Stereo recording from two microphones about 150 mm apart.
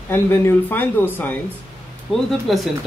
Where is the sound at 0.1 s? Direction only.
15° left (ahead or behind).